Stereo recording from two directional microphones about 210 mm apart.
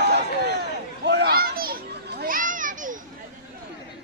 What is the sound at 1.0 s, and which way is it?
Children playing, 50° right (ahead or behind).